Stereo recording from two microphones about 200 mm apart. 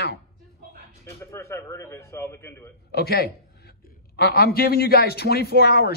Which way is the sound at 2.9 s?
50° left (ahead or behind).